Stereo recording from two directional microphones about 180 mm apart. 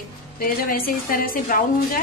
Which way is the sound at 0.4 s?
55° left (ahead or behind).